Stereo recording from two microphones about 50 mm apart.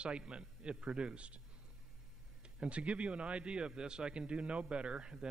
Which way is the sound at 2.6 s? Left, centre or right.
Right.